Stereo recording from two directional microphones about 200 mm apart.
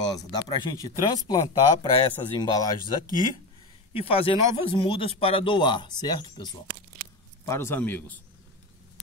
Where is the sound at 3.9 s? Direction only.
30° left (ahead or behind); by 8.2 s 10° left (ahead or behind).